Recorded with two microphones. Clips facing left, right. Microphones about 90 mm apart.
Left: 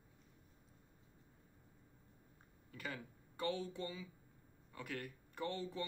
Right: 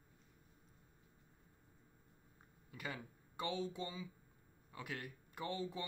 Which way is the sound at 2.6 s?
15° right (ahead or behind).